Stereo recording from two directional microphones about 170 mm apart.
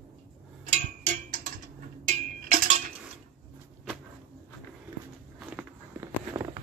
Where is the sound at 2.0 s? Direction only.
55° right (ahead or behind).